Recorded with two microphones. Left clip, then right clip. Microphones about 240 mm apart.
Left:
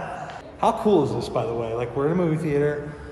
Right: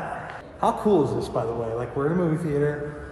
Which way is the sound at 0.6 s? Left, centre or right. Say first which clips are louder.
Left 1 dB; centre.